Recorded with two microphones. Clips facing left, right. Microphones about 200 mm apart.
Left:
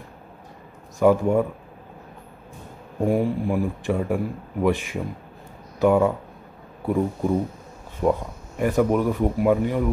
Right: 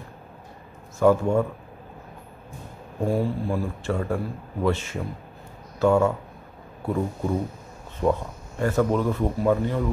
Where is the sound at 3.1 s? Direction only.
15° left (ahead or behind).